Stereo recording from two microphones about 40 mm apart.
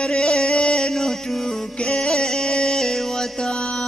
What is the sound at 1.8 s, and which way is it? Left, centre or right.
Music, left.